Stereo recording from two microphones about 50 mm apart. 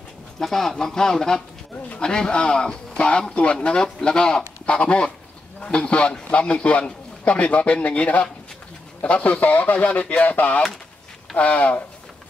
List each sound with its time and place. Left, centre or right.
0.4 s a man's voice: centre; by 11.8 s left